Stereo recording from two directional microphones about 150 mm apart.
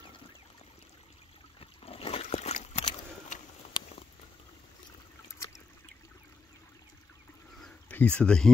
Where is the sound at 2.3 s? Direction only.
45° left (ahead or behind).